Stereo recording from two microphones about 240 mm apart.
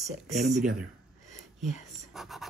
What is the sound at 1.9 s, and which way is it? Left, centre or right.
Speech, centre.